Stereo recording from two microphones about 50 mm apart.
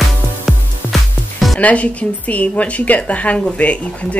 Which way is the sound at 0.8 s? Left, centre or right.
Right.